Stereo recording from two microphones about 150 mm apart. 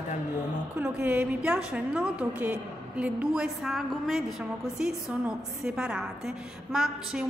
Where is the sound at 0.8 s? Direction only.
10° right (ahead or behind).